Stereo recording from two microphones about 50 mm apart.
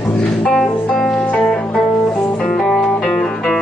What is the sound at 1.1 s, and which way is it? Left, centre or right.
Music, left.